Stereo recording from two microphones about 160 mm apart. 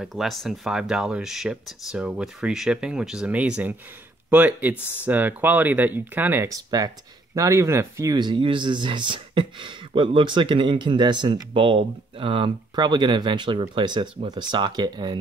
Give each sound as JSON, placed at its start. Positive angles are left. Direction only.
{"t": 0.0, "sound": "speech", "side_deg": 0}